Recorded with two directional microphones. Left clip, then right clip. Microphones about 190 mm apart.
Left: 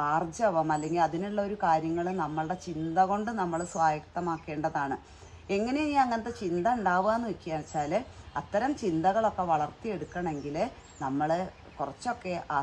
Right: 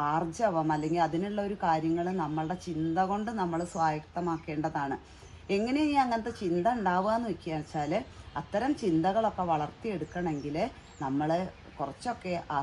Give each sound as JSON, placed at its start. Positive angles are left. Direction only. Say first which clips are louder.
{"t": 0.2, "sound": "a woman's voice", "louder": "left 1 dB", "side_deg": 15}
{"t": 5.5, "sound": "a woman's voice", "louder": "even", "side_deg": 5}